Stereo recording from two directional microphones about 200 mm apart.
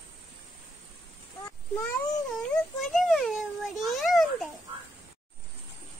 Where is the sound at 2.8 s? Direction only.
Centre (ahead or behind).